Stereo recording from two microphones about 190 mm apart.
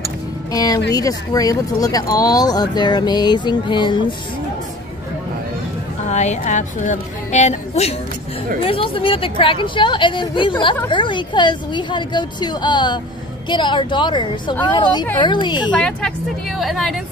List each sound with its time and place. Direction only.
0.5 s speech: 20° left (ahead or behind)
6.0 s speech: 40° left (ahead or behind)
15.7 s a woman's voice: 5° left (ahead or behind)